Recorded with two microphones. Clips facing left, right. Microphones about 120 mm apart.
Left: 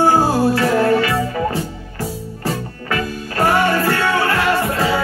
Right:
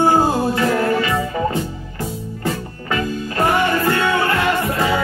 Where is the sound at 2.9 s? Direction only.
20° right (ahead or behind).